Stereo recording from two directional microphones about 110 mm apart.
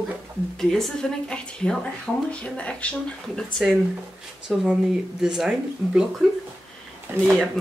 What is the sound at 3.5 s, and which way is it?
Speech, centre (ahead or behind).